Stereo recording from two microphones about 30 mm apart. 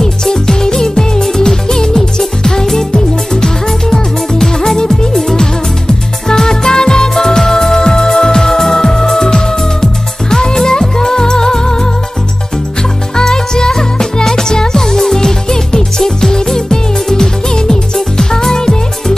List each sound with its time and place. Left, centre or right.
0.0 s music: left
13.1 s music: left